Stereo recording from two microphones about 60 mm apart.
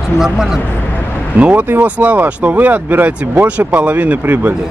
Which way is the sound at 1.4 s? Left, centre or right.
Right.